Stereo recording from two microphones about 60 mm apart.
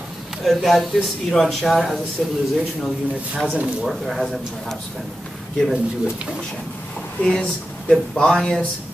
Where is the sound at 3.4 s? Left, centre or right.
Centre.